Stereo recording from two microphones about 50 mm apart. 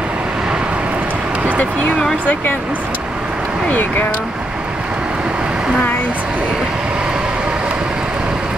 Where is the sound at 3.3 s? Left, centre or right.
Right.